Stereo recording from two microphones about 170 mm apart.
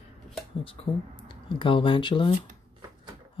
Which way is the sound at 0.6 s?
30° left (ahead or behind).